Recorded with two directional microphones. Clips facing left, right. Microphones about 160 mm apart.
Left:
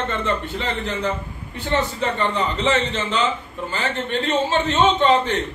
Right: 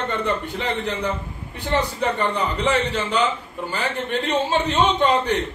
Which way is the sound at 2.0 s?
15° right (ahead or behind).